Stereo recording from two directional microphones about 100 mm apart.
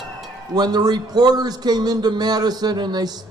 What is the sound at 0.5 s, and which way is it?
A man's voice, 45° right (ahead or behind).